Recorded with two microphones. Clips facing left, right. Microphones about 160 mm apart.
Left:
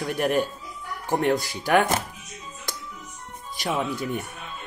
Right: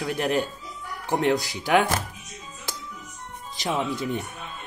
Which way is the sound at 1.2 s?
15° right (ahead or behind).